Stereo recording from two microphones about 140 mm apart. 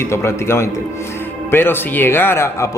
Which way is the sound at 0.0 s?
20° left (ahead or behind).